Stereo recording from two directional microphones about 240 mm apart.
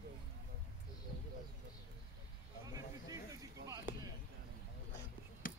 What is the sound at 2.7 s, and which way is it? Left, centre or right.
Snake, centre.